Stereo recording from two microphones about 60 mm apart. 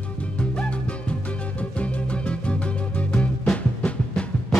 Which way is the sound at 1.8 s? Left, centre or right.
Centre.